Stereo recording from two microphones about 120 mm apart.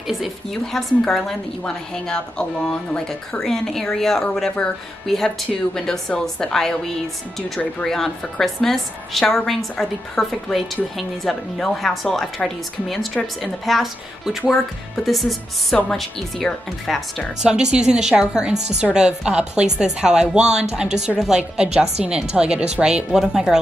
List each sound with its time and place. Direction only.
0.2 s a woman's voice: centre (ahead or behind)